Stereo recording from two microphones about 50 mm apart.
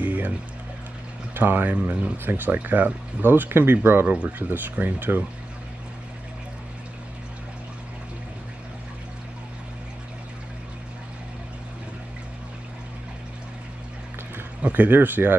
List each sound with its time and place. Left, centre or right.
0.0 s music: right
1.3 s speech: right
1.8 s speech: right
2.2 s speech: right
4.1 s speech: right
14.7 s speech: right